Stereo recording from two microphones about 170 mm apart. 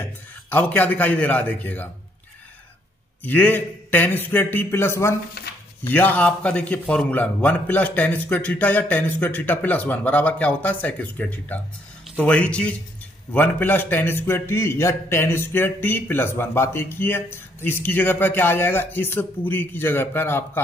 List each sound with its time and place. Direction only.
0.5 s a man's voice: 10° left (ahead or behind)
3.3 s a man's voice: 10° left (ahead or behind)
5.4 s a sound: 65° left (ahead or behind)
5.9 s a man's voice: 10° left (ahead or behind)